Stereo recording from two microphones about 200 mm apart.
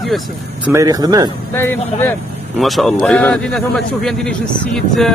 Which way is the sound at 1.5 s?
10° left (ahead or behind).